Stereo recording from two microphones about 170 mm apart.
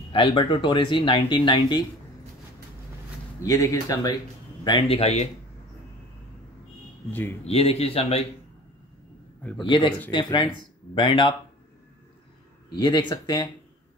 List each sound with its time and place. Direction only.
0.1 s speech: 30° left (ahead or behind)
3.4 s speech: 20° left (ahead or behind)
4.6 s a man's voice: 35° left (ahead or behind)
7.1 s a man's voice: 10° left (ahead or behind)
7.4 s a man's voice: 35° left (ahead or behind)
9.6 s speech: 25° left (ahead or behind)
12.7 s speech: 25° left (ahead or behind)